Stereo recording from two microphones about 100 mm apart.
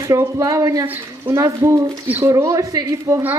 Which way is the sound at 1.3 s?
30° right (ahead or behind).